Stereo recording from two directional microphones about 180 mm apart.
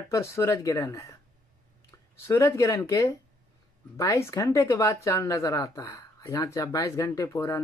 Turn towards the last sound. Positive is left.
turn(degrees=15)  # may be behind; listen again after turning